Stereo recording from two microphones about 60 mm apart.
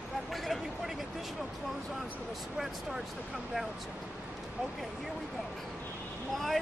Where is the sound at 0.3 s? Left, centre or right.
Centre.